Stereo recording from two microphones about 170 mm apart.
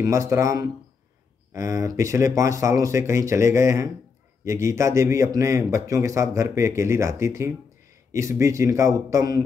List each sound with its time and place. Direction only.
0.0 s a man's voice: 20° right (ahead or behind)